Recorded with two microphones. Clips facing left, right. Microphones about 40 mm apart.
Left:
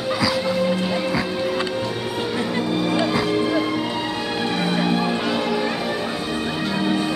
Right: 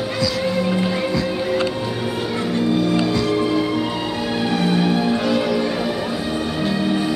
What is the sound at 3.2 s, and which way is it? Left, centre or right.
Music, centre.